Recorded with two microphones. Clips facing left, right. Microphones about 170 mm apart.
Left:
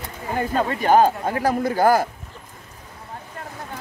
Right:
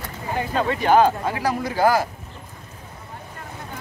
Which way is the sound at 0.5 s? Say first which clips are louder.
Even; 45° left (ahead or behind).